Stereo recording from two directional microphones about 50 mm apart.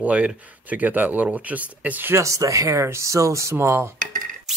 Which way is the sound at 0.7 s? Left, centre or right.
Right.